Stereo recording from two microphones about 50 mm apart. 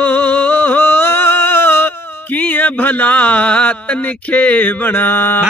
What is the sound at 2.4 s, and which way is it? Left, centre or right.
Speech, left.